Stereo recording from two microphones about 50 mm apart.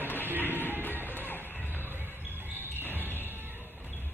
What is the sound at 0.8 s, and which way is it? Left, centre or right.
Music, left.